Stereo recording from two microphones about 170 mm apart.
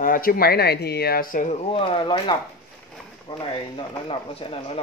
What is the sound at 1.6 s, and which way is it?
Speech, 30° left (ahead or behind).